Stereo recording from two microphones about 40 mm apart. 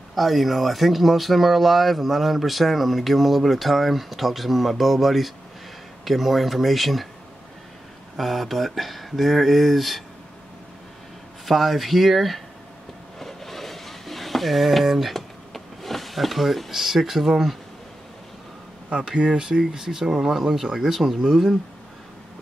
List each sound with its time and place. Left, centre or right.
0.1 s speech: centre
8.2 s speech: centre
11.4 s speech: centre
13.2 s a sound: centre
16.7 s speech: centre
18.9 s speech: right; by 21.5 s centre